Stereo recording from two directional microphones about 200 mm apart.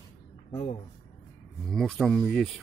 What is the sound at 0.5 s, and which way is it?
Speech, 30° left (ahead or behind).